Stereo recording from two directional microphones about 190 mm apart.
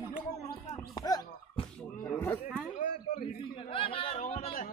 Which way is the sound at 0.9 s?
20° left (ahead or behind).